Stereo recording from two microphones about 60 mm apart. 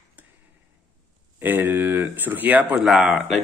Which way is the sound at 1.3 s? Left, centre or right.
Right.